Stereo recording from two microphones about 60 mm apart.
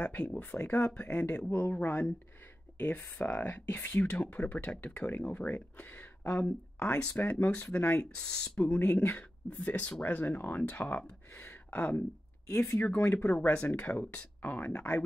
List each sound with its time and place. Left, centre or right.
0.0 s speech: left
6.9 s speech: centre
7.2 s speech: left
8.0 s speech: centre
8.6 s speech: left
8.9 s speech: left
12.4 s speech: left
12.7 s speech: left
13.0 s speech: left
13.3 s speech: left